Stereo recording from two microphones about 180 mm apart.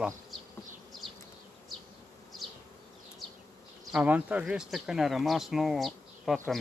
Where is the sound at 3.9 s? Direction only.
5° right (ahead or behind).